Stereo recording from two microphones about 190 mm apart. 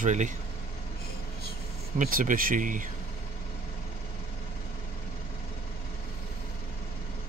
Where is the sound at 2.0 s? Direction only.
45° right (ahead or behind).